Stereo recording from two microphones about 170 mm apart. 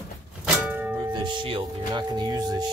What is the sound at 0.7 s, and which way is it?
Music, 5° right (ahead or behind).